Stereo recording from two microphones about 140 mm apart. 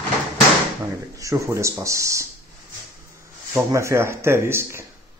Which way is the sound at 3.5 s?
20° right (ahead or behind).